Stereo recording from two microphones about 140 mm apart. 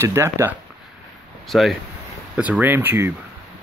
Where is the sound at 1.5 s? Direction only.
Centre (ahead or behind).